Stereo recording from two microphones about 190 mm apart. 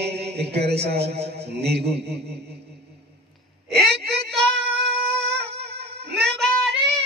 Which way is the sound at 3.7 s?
60° right (ahead or behind).